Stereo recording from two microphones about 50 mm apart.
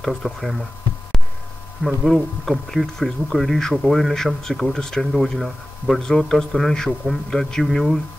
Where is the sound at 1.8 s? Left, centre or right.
Centre.